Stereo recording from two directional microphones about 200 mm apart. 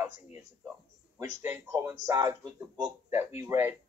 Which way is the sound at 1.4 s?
10° right (ahead or behind).